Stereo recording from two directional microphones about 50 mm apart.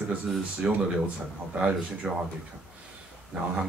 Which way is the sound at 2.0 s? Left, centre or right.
Right.